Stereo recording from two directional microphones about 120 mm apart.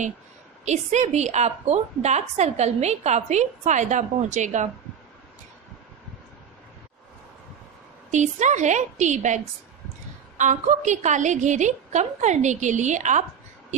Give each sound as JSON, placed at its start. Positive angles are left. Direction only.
{"t": 0.7, "sound": "a woman's voice", "side_deg": -70}
{"t": 8.1, "sound": "a woman's voice", "side_deg": -75}